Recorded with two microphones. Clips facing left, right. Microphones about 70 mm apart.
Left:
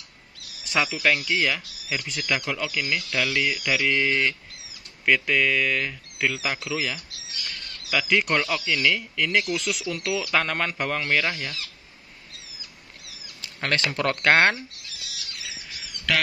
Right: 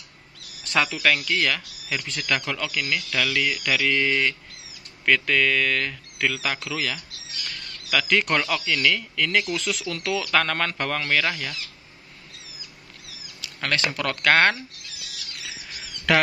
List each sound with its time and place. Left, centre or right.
0.7 s speech: centre
13.4 s a sound: left
13.9 s speech: left
16.1 s speech: right